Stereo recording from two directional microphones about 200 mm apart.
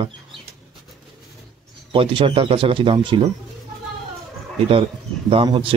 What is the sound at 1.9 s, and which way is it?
A man's voice, 25° right (ahead or behind).